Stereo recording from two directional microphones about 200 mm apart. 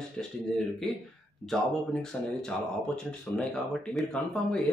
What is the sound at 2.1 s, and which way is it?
Speech, 5° left (ahead or behind).